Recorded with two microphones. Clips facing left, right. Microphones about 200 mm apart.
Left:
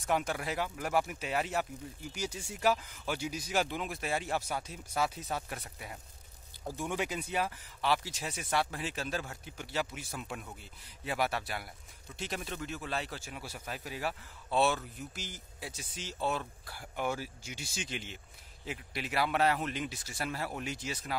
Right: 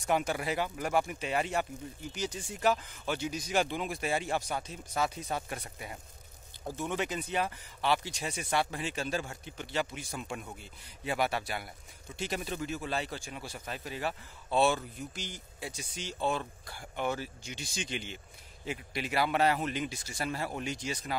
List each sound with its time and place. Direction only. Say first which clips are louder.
0.0 s speech: right 2 dB; centre (ahead or behind)
6.8 s speech: right 1 dB; 10° left (ahead or behind)